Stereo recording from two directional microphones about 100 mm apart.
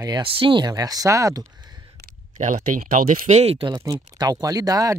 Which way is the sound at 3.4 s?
90° right.